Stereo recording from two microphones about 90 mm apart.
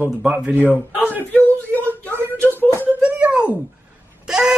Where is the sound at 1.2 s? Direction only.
20° left (ahead or behind).